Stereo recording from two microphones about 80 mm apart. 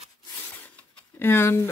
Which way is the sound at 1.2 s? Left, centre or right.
Left.